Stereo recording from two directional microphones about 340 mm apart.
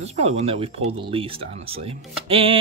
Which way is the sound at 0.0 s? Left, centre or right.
Centre.